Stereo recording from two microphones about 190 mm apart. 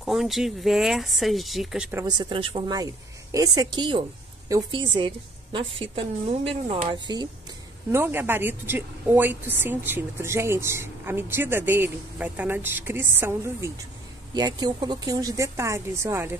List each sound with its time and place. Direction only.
0.0 s speech: centre (ahead or behind)
2.0 s a woman's voice: 20° right (ahead or behind)
7.9 s a woman's voice: 10° right (ahead or behind)